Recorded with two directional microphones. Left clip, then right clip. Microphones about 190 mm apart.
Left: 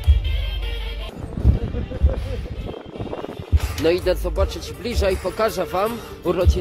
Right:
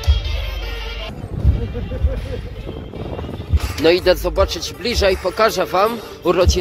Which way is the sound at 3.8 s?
10° right (ahead or behind).